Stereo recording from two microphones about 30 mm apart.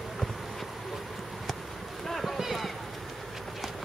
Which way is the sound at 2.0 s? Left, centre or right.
Centre.